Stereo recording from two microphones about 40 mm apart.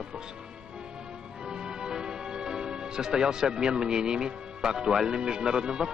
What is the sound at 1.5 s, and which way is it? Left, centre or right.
Speech, centre.